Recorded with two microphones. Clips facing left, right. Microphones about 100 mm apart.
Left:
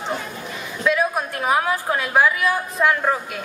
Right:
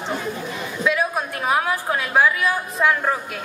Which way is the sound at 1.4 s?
Centre (ahead or behind).